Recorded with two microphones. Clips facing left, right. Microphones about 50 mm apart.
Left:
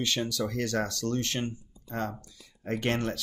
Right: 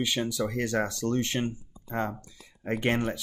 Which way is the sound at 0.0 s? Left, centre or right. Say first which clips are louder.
Right 1 dB; centre.